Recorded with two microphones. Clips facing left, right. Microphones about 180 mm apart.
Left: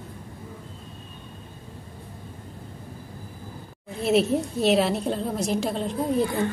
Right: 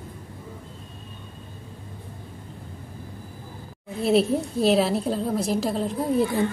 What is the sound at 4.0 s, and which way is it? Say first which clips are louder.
A woman's voice: right 1 dB; centre (ahead or behind).